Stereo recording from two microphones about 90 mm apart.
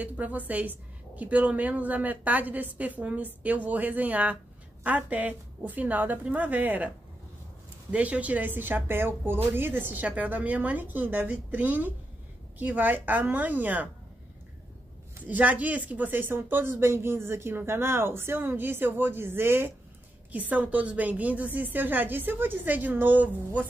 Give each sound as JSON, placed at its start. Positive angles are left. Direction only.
{"t": 0.0, "sound": "speech", "side_deg": -15}
{"t": 7.9, "sound": "speech", "side_deg": -15}
{"t": 15.2, "sound": "speech", "side_deg": -20}